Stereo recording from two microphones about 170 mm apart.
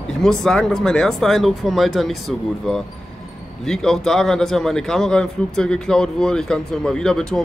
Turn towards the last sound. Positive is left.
turn(degrees=5)  # may be behind; listen again after turning